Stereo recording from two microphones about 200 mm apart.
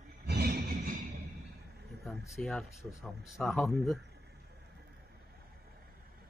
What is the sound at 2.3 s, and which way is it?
Speech, centre (ahead or behind).